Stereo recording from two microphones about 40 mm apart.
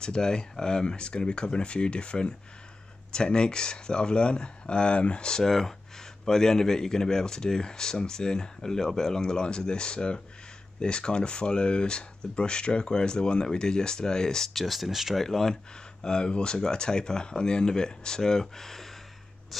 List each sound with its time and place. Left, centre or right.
0.0 s speech: centre
14.5 s speech: centre
15.1 s speech: centre
16.0 s speech: left